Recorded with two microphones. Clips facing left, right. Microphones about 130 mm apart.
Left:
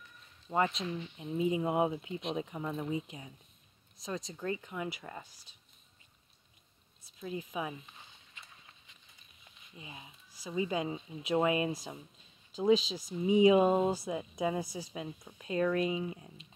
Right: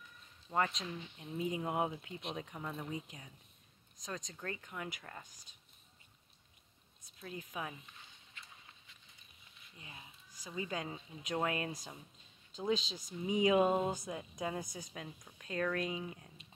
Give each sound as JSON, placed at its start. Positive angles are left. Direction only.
{"t": 0.5, "sound": "speech", "side_deg": 10}
{"t": 7.2, "sound": "speech", "side_deg": 10}
{"t": 9.8, "sound": "speech", "side_deg": 15}